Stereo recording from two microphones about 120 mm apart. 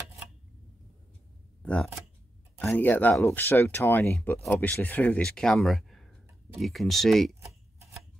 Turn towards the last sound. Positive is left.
turn(degrees=0)  # may be behind; listen again after turning